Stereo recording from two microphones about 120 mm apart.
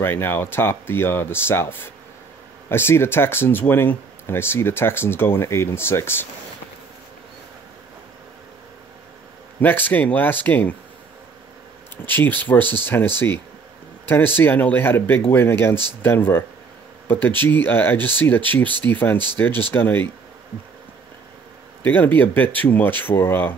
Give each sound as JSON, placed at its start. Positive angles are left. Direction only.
{"t": 0.0, "sound": "speech", "side_deg": 20}
{"t": 9.6, "sound": "speech", "side_deg": 15}
{"t": 12.1, "sound": "speech", "side_deg": 15}
{"t": 21.8, "sound": "speech", "side_deg": 15}